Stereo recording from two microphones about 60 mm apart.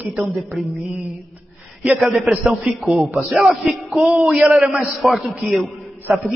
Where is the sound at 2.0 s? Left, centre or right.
Centre.